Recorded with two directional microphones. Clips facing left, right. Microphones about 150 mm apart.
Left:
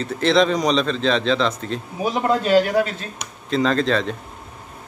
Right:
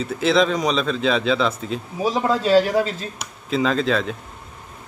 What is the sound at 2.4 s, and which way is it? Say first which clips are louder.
Speech: right 1 dB; 30° right (ahead or behind).